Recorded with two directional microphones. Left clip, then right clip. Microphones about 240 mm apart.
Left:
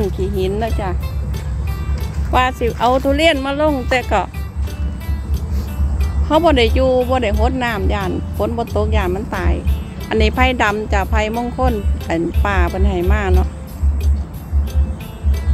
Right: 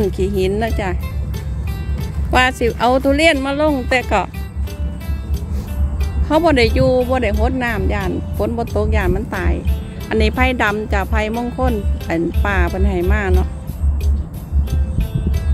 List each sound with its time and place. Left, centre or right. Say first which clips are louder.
0.2 s speech: right 2 dB; right
2.3 s speech: right 1 dB; right; by 4.3 s centre
6.2 s speech: left 1 dB; centre